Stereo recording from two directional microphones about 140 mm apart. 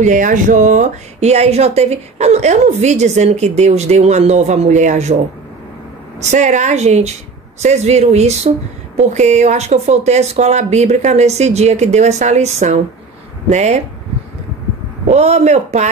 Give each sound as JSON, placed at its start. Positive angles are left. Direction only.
{"t": 0.0, "sound": "speech", "side_deg": -65}
{"t": 6.2, "sound": "a woman's voice", "side_deg": -55}
{"t": 15.0, "sound": "speech", "side_deg": -50}